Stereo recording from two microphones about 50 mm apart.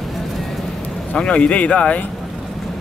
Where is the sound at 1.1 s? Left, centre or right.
Left.